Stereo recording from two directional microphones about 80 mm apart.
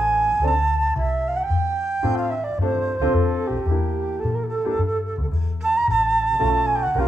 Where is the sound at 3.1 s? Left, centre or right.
Right.